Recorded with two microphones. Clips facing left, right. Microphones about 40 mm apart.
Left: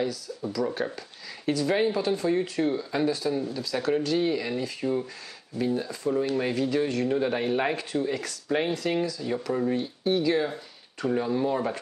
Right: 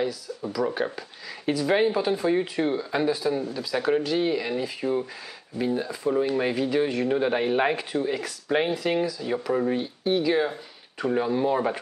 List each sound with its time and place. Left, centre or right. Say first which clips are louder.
0.0 s speech: right 1 dB; centre